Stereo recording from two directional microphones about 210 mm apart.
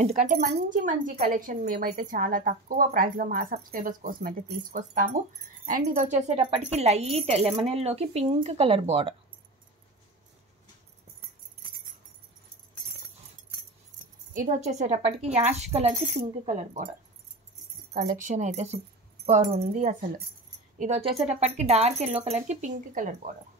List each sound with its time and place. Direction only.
0.0 s speech: 30° right (ahead or behind)
14.3 s speech: 40° right (ahead or behind)
18.2 s speech: 35° right (ahead or behind)